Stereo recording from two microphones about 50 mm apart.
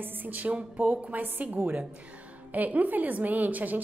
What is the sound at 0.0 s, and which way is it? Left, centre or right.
A woman's voice, right.